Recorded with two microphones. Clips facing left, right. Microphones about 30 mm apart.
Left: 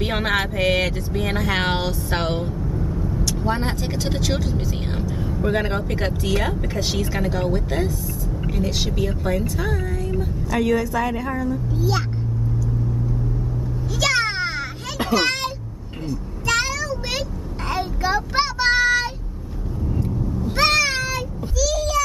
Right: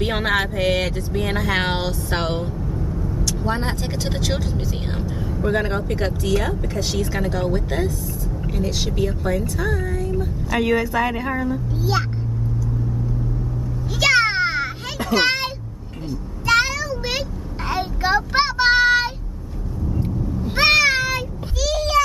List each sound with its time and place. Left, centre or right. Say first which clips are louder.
0.0 s speech: right 1 dB; centre
9.6 s a sound: right 2 dB; centre
10.5 s a woman's voice: right 1 dB; right
13.9 s children playing: right 4 dB; centre
15.1 s speech: right 2 dB; centre
16.1 s a sound: right 3 dB; centre
17.6 s child singing: right 2 dB; centre
20.0 s meow: even; centre
21.5 s a sound: right 2 dB; right